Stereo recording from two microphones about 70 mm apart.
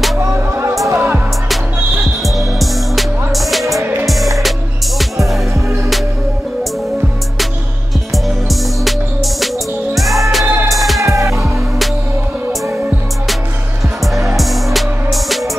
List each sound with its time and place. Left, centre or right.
0.2 s music: right
2.2 s music: centre
8.1 s music: centre
11.0 s music: right
14.3 s music: centre